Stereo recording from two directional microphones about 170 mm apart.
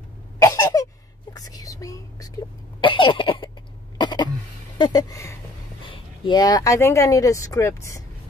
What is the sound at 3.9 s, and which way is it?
Cough, 25° left (ahead or behind).